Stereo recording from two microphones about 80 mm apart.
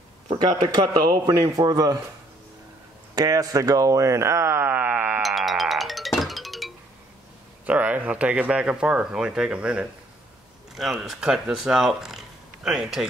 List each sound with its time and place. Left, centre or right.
0.3 s a man's voice: right
3.2 s speech: right
5.2 s music: centre
7.6 s speech: centre
10.7 s speech: centre